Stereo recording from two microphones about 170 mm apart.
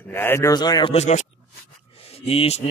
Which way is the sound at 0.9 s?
45° left (ahead or behind).